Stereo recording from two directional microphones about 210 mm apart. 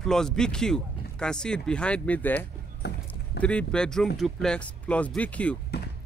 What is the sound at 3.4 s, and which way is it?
Speech, 5° left (ahead or behind).